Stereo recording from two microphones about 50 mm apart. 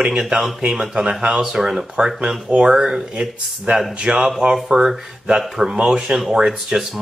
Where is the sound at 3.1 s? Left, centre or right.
Centre.